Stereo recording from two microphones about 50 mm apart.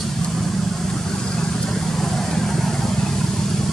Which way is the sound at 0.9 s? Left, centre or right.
Centre.